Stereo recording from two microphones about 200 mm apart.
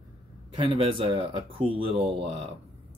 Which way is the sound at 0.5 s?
25° right (ahead or behind).